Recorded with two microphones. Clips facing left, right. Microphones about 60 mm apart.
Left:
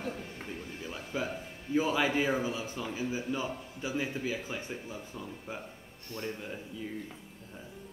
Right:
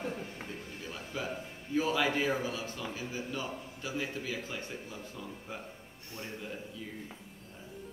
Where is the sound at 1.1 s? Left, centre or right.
Centre.